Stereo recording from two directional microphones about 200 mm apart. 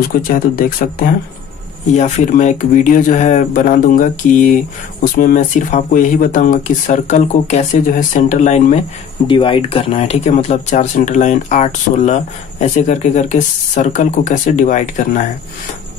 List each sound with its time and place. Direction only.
0.1 s speech: 45° left (ahead or behind)
9.3 s speech: 25° left (ahead or behind)